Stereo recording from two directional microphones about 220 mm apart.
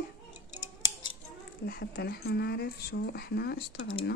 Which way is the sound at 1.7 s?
45° left (ahead or behind).